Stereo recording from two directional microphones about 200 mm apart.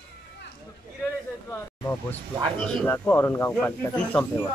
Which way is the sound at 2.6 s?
10° left (ahead or behind).